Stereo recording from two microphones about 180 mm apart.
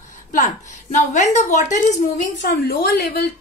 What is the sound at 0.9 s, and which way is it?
A woman's voice, 40° left (ahead or behind).